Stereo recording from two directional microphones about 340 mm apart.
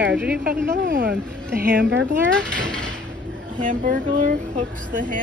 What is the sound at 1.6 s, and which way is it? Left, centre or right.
Speech, right.